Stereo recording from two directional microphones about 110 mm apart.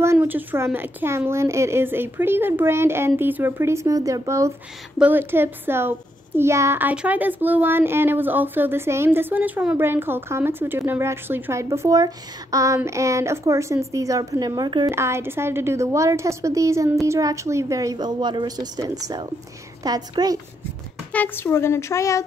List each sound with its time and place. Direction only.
0.0 s a child's voice: 20° right (ahead or behind)
4.9 s a child's voice: 15° right (ahead or behind); by 14.9 s 40° right (ahead or behind)
14.9 s a child's voice: 25° right (ahead or behind)
21.1 s speech: 15° left (ahead or behind)